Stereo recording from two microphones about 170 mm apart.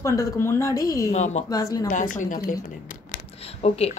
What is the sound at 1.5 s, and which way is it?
Speech, 20° left (ahead or behind).